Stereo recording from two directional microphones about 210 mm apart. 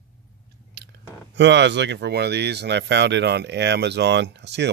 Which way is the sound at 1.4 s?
55° right (ahead or behind).